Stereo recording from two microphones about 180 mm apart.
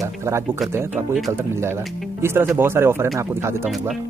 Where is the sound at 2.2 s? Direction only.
15° right (ahead or behind).